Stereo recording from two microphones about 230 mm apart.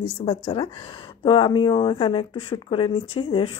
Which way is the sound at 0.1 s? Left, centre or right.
Left.